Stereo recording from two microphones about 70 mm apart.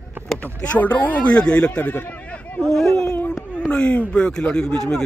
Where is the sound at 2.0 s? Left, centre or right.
Left.